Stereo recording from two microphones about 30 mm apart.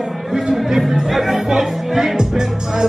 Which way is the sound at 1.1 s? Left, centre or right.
Centre.